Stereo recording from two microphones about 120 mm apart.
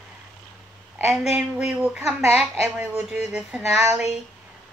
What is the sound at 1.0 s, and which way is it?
A woman's voice, 5° right (ahead or behind).